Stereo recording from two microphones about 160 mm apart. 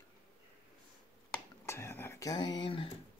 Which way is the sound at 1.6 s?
15° left (ahead or behind).